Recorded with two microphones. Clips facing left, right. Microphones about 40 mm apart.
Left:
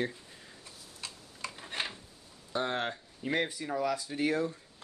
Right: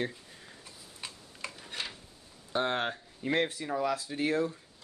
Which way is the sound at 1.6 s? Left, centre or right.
Left.